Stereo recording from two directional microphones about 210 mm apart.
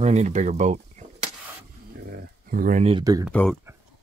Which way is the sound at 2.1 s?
45° right (ahead or behind).